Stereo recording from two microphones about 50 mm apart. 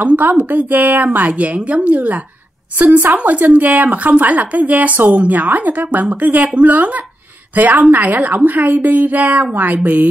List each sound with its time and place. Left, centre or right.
0.0 s speech: right